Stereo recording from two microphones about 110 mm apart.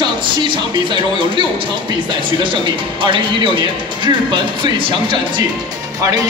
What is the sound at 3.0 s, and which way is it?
Speech, 50° right (ahead or behind).